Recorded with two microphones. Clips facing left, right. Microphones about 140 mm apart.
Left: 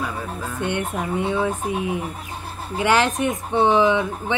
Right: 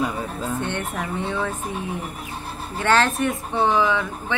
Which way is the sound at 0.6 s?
15° left (ahead or behind).